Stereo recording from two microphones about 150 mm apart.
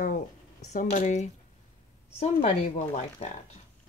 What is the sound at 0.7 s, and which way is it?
Speech, 55° left (ahead or behind).